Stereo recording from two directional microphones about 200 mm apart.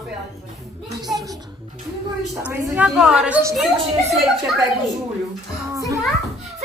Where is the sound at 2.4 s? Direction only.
10° right (ahead or behind).